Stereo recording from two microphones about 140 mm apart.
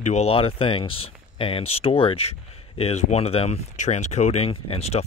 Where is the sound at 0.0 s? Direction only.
50° left (ahead or behind).